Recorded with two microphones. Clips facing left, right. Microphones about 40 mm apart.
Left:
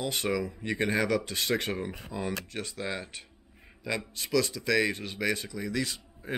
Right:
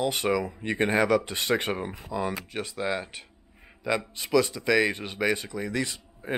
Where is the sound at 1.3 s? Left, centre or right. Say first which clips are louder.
Right 3 dB; right.